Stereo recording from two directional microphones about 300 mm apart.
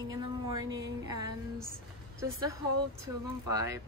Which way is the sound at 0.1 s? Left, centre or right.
Centre.